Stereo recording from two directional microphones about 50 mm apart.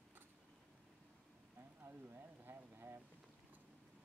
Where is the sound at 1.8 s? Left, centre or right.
Right.